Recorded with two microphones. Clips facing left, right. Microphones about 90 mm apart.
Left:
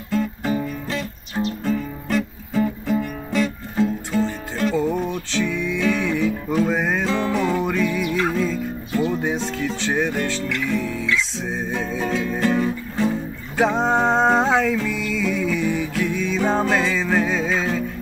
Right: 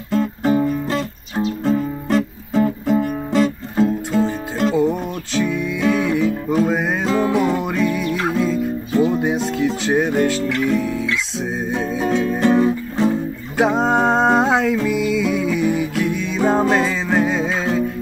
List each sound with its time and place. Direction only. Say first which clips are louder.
0.1 s music: right 5 dB; 30° right (ahead or behind)
1.3 s music: right 4 dB; 25° right (ahead or behind)
3.7 s music: right 3 dB; 20° right (ahead or behind)
4.7 s music: right 3 dB; 10° right (ahead or behind)